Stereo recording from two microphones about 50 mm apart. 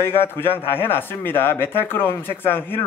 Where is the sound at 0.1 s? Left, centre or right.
Left.